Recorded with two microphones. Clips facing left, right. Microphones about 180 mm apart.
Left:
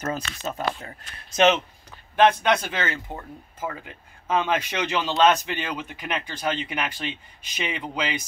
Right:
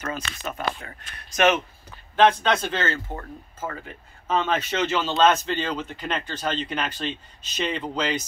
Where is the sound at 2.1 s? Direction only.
10° left (ahead or behind).